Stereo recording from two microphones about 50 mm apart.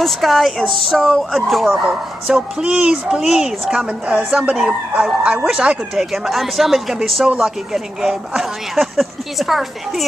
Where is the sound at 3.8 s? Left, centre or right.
Centre.